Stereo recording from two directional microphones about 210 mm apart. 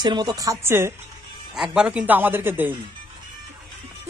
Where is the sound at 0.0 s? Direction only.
20° right (ahead or behind).